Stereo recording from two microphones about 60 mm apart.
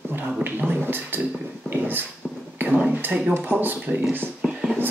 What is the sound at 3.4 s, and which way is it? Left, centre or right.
Speech, right.